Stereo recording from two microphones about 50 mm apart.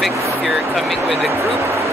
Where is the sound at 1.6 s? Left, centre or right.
Right.